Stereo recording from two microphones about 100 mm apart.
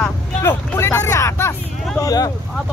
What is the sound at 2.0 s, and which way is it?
Speech, 40° left (ahead or behind).